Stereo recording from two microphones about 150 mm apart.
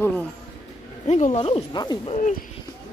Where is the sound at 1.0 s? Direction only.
50° left (ahead or behind).